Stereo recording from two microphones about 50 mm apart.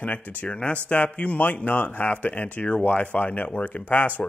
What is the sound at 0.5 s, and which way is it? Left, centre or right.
Speech, left.